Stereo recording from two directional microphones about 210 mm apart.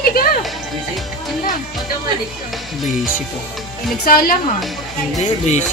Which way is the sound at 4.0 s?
45° left (ahead or behind).